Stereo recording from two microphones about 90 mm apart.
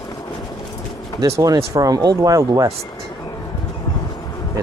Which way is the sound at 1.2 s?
40° right (ahead or behind).